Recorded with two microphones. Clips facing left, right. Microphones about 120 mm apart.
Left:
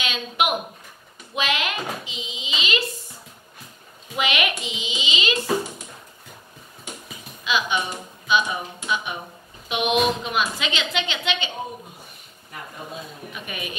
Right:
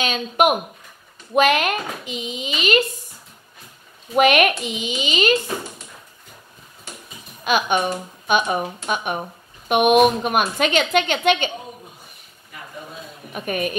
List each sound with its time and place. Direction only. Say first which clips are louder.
0.0 s a woman's voice: right 6 dB; 45° right (ahead or behind)
4.1 s a woman's voice: right 9 dB; 50° right (ahead or behind)
7.4 s a woman's voice: right 5 dB; 50° right (ahead or behind)
13.3 s a woman's voice: right 12 dB; 45° right (ahead or behind)